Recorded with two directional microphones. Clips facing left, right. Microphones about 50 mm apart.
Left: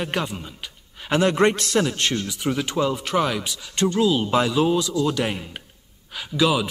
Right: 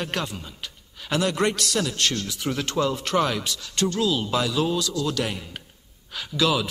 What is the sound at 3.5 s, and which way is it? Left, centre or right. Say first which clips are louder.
A man's voice: left 3 dB; left.